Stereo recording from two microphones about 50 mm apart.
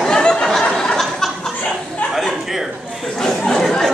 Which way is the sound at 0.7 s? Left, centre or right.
Centre.